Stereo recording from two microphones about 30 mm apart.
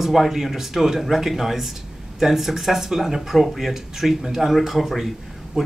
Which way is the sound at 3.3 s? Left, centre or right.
Centre.